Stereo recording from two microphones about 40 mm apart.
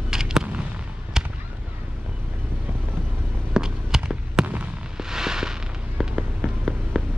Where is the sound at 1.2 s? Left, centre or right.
Centre.